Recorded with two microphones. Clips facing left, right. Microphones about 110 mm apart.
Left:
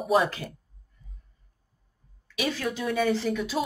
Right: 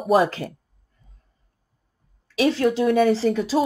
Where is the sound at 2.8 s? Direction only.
45° right (ahead or behind).